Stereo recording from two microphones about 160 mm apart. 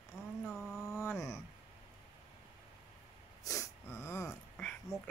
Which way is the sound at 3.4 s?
20° left (ahead or behind).